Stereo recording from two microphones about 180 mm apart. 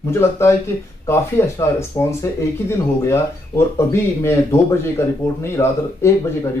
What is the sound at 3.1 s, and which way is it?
Speech, 15° left (ahead or behind).